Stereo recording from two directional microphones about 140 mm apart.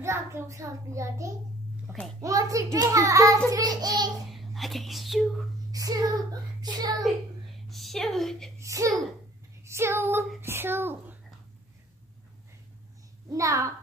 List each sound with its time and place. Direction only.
0.0 s a child's voice: 20° right (ahead or behind)
1.9 s a sound: 20° right (ahead or behind)
2.2 s a child's voice: 25° right (ahead or behind)
4.3 s speech: centre (ahead or behind)
5.7 s a child's voice: 25° right (ahead or behind)
7.6 s a woman's voice: centre (ahead or behind)
8.5 s a child's voice: 25° right (ahead or behind)
13.3 s a child's voice: 20° right (ahead or behind)